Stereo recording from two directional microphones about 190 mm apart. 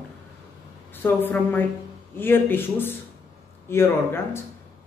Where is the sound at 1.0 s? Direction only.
10° left (ahead or behind).